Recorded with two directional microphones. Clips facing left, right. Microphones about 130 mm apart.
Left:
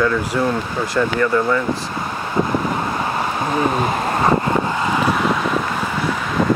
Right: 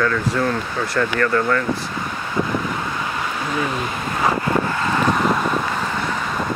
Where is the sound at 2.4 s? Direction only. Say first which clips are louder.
Left 3 dB; 30° left (ahead or behind).